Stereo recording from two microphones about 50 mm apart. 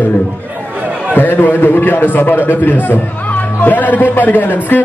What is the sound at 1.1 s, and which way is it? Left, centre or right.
A man's voice, left.